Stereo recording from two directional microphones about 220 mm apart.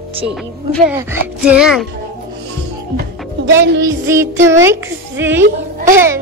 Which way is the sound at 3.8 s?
10° right (ahead or behind).